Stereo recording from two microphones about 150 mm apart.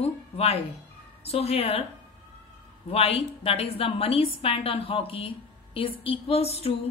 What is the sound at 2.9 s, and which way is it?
A woman's voice, 40° left (ahead or behind).